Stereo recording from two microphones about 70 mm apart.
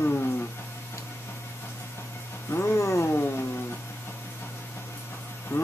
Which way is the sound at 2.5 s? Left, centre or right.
Left.